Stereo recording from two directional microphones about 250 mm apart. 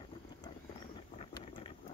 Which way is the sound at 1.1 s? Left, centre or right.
Left.